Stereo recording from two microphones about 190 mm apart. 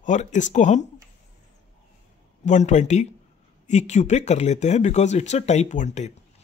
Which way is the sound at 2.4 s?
40° left (ahead or behind).